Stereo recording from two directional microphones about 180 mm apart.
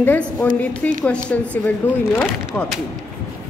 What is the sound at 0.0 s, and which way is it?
A woman's voice, 10° left (ahead or behind).